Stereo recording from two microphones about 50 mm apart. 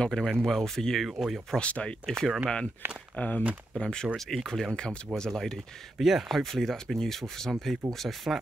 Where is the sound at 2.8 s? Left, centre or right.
Right.